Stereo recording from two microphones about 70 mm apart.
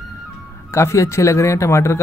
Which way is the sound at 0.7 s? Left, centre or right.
Left.